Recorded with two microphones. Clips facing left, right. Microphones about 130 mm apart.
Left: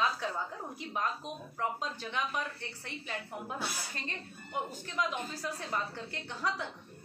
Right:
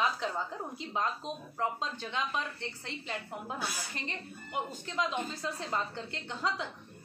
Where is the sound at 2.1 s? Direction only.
20° right (ahead or behind).